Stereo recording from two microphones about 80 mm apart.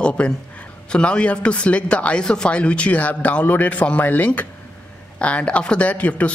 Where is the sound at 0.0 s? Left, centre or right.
Centre.